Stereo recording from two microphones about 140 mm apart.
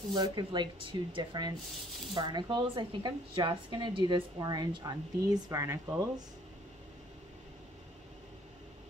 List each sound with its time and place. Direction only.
0.1 s a woman's voice: 30° right (ahead or behind)